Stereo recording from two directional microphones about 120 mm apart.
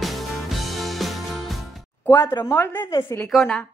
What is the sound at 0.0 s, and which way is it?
Music, centre (ahead or behind).